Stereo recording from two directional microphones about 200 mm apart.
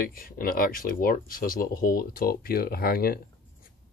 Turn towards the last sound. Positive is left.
turn(degrees=50)  # may be behind; listen again after turning